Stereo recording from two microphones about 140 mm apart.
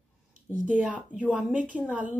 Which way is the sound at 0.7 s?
10° right (ahead or behind).